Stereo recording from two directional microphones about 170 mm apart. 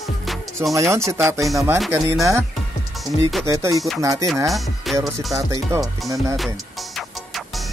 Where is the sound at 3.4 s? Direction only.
20° right (ahead or behind).